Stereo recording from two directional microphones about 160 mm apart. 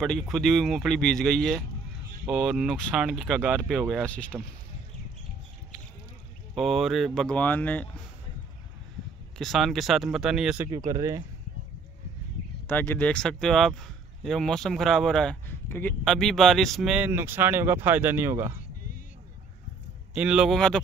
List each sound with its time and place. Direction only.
0.0 s speech: centre (ahead or behind)
6.5 s speech: centre (ahead or behind)
9.4 s speech: centre (ahead or behind)
10.9 s speech: 20° right (ahead or behind)
12.6 s speech: 15° left (ahead or behind)
15.4 s a sound: 15° left (ahead or behind)
16.0 s speech: 5° left (ahead or behind); by 18.5 s 15° right (ahead or behind)
20.2 s speech: 5° right (ahead or behind)